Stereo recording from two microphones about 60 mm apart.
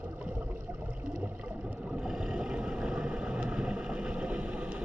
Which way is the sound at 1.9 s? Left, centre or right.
Centre.